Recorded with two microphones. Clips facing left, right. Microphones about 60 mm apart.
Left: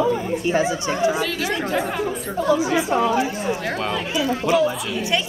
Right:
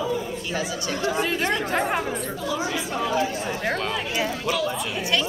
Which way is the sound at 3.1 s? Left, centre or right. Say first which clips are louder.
Left 3 dB; centre.